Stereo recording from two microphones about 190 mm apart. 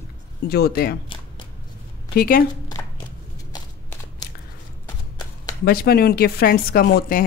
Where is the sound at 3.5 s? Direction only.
20° left (ahead or behind).